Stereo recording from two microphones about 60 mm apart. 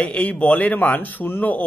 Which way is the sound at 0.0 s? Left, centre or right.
Left.